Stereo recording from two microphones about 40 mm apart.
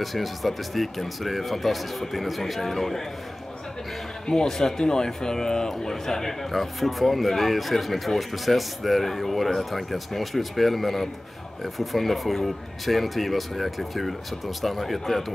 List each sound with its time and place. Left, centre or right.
0.0 s speech: centre
4.3 s a man's voice: centre
6.5 s speech: centre